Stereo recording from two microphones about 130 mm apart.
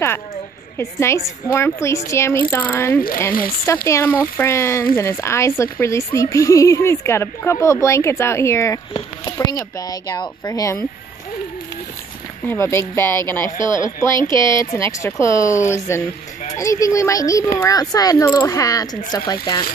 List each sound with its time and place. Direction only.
0.7 s speech: 20° left (ahead or behind)
9.2 s speech: 30° left (ahead or behind)
12.4 s speech: 20° left (ahead or behind); by 19.6 s 35° left (ahead or behind)